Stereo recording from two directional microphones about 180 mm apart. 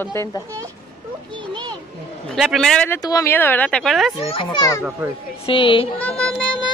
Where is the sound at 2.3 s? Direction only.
Centre (ahead or behind).